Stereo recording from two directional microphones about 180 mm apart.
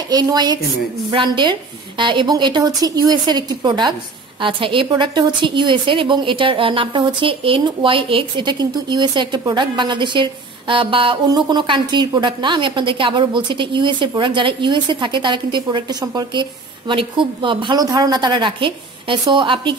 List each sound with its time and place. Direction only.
0.1 s a woman's voice: 20° right (ahead or behind)